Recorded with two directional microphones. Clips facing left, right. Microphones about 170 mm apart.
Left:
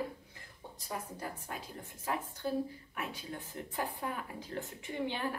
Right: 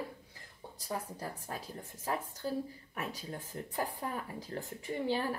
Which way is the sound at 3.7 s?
40° right (ahead or behind).